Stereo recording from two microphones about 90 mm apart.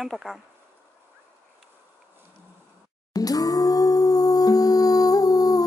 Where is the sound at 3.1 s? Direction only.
45° left (ahead or behind).